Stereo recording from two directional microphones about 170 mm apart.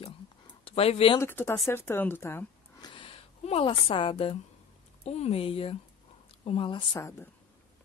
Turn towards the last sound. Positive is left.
turn(degrees=15)  # may be behind; listen again after turning